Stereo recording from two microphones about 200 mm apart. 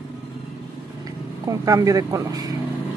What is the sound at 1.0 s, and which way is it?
Speech, 15° right (ahead or behind).